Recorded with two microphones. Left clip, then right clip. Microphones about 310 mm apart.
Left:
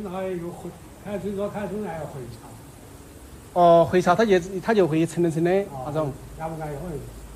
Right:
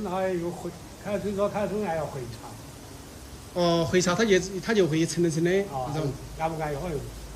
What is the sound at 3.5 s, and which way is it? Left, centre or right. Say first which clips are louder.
A man's voice: left 8 dB; centre.